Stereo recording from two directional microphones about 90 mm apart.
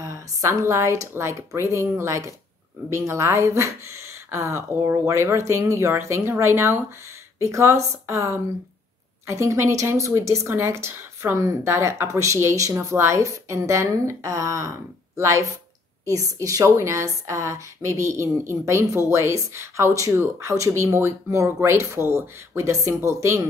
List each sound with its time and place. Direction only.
0.0 s speech: 35° right (ahead or behind)